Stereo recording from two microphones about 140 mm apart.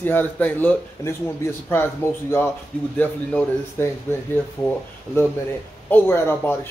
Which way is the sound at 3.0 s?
10° left (ahead or behind).